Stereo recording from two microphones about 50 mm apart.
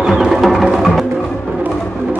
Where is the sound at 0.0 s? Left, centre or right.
Centre.